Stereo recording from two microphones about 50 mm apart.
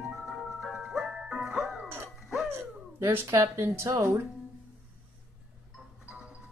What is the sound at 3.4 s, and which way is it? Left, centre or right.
Speech, right.